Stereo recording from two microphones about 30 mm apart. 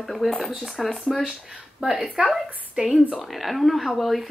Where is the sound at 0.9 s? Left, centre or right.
Centre.